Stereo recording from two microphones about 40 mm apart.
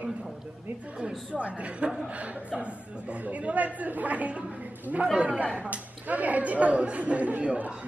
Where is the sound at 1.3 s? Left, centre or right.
Right.